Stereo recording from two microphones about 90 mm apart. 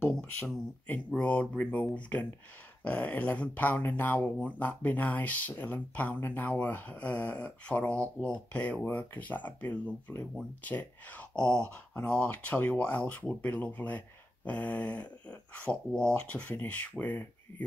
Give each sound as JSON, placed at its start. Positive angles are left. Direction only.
{"t": 0.8, "sound": "speech", "side_deg": 20}